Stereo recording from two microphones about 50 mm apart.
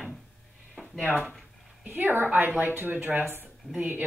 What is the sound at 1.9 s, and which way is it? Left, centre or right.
A woman's voice, right.